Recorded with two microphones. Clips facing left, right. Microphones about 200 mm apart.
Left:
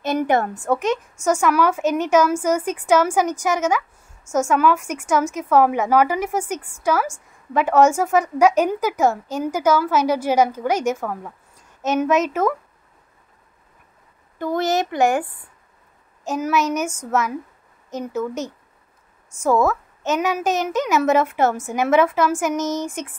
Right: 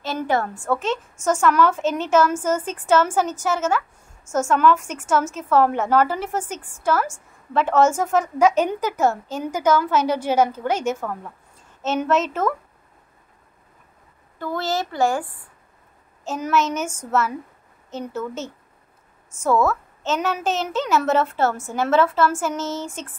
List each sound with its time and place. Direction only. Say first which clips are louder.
0.0 s a woman's voice: left 4 dB; 20° left (ahead or behind)
14.4 s a woman's voice: left 4 dB; 20° left (ahead or behind)